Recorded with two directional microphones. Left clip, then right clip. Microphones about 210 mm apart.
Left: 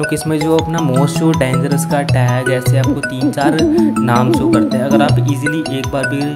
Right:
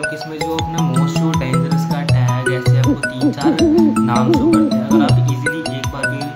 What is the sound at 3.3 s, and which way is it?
Speech, 40° left (ahead or behind).